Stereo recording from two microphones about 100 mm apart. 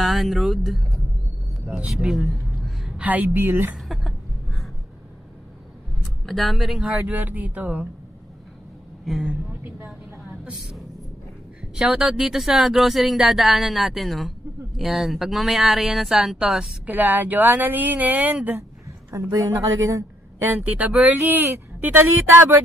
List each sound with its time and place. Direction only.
0.0 s speech: centre (ahead or behind)
1.9 s a sound: 5° right (ahead or behind)
3.0 s speech: 15° right (ahead or behind)
3.7 s a sound: centre (ahead or behind)
6.2 s speech: centre (ahead or behind)
9.0 s a woman's voice: centre (ahead or behind)
10.4 s speech: 5° right (ahead or behind)
19.9 s speech: 30° right (ahead or behind)